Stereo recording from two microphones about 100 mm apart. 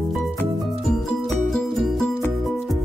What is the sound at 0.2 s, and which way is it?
Music, centre (ahead or behind).